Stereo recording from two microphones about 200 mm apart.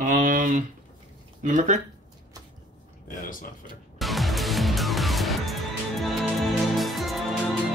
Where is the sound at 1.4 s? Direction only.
40° right (ahead or behind).